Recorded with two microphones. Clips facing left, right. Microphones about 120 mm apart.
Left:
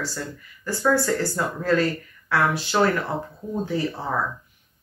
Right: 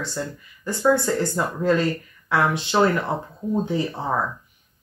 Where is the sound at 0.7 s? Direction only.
20° right (ahead or behind).